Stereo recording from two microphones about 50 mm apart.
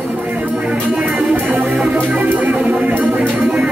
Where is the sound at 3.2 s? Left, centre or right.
Right.